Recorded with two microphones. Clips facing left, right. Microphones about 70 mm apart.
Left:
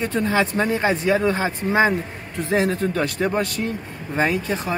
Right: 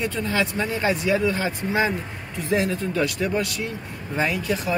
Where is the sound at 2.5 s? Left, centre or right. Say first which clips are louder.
Left 3 dB; left.